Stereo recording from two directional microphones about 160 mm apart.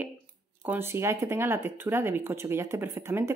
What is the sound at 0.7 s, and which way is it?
Speech, 15° right (ahead or behind).